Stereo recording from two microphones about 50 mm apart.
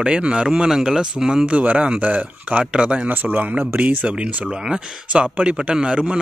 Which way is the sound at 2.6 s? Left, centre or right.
Centre.